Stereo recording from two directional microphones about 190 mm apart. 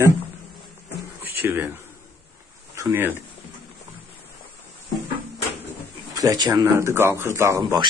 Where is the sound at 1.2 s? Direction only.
10° right (ahead or behind).